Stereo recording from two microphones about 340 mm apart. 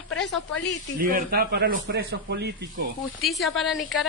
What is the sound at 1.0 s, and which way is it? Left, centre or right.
A man's voice, right.